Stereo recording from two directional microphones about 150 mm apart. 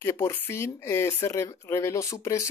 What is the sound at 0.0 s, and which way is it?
Speech, 20° left (ahead or behind).